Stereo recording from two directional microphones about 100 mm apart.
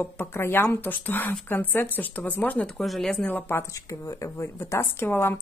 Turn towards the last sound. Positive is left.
turn(degrees=25)  # may be behind; listen again after turning